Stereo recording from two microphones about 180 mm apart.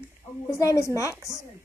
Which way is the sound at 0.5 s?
15° left (ahead or behind).